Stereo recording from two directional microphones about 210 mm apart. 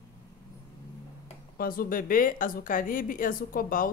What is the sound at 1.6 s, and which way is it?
Speech, 45° left (ahead or behind).